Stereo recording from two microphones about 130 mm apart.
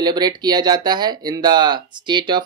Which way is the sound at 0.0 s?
35° right (ahead or behind).